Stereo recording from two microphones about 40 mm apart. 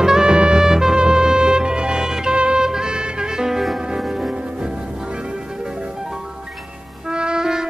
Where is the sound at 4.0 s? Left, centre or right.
Centre.